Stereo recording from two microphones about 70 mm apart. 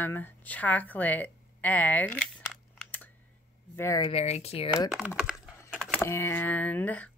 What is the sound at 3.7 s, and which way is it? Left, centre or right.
Speech, left.